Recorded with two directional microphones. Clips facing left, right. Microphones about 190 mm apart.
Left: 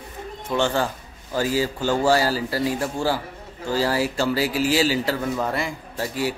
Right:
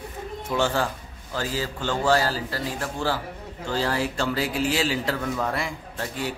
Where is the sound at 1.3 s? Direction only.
10° left (ahead or behind).